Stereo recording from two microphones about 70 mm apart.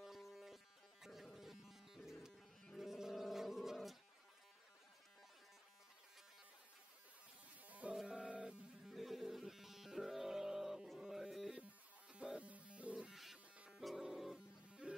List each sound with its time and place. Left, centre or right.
0.0 s music: centre
1.0 s insect: centre
2.8 s bird: centre
7.6 s wild animals: right
7.9 s music: centre
8.8 s music: centre
12.1 s insect: centre
13.1 s buzz: centre
13.7 s music: centre